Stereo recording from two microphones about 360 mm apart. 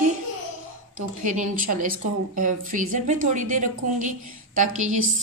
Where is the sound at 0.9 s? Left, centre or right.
Right.